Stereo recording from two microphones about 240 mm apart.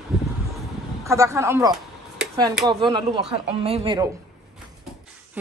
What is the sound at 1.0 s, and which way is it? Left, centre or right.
Speech, centre.